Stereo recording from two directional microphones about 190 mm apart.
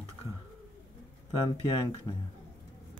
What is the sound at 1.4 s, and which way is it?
Speech, 25° left (ahead or behind).